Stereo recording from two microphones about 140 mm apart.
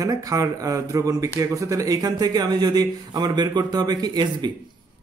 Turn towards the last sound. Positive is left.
turn(degrees=-30)  # may be behind; listen again after turning